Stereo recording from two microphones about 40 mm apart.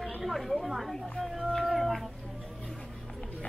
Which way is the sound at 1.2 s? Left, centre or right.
Centre.